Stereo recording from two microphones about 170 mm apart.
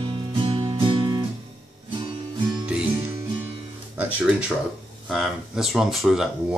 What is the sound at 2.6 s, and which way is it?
Music, 5° right (ahead or behind).